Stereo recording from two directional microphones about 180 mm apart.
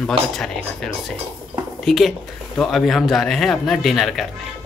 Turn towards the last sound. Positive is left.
turn(degrees=0)  # may be behind; listen again after turning